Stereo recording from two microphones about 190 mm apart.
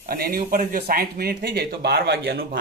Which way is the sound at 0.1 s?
50° right (ahead or behind).